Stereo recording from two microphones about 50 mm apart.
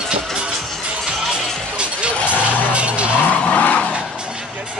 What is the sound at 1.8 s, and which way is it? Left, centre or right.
Vehicle, right.